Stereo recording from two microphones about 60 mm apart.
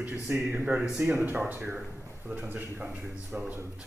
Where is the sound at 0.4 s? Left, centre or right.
Right.